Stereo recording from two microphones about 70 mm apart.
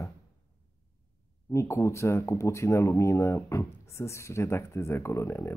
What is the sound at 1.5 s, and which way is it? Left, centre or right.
Speech, left.